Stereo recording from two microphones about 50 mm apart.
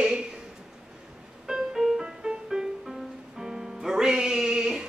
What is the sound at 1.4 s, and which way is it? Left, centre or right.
Music, centre.